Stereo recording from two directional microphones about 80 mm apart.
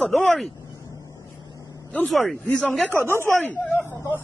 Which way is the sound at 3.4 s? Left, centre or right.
Left.